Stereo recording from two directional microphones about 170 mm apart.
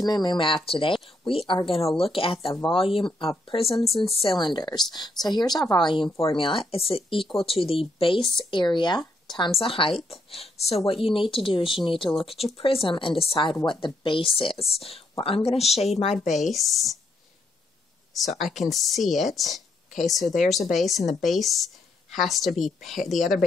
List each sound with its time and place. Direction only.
0.0 s speech: 25° left (ahead or behind)
8.2 s speech: centre (ahead or behind)
8.5 s speech: 25° left (ahead or behind)
16.3 s speech: centre (ahead or behind)
18.4 s speech: centre (ahead or behind)